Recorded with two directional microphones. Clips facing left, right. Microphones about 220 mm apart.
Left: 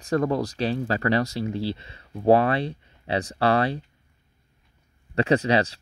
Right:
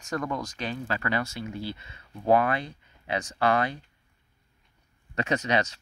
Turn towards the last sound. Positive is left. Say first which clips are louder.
# left 6 dB
turn(degrees=35)  # may be behind; listen again after turning